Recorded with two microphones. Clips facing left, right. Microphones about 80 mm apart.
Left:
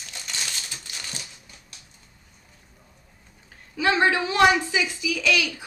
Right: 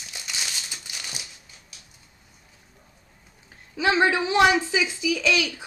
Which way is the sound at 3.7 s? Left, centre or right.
Right.